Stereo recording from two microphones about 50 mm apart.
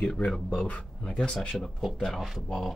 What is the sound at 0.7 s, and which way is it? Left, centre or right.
Speech, left.